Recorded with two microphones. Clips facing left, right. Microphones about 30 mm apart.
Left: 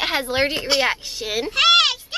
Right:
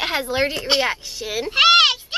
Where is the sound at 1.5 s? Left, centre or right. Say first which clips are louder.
Right 2 dB; centre.